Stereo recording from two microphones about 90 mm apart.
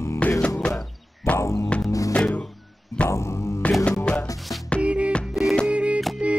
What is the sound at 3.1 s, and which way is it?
Music, 30° left (ahead or behind).